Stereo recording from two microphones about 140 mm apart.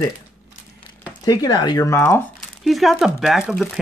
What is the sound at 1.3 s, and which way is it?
Speech, 30° left (ahead or behind).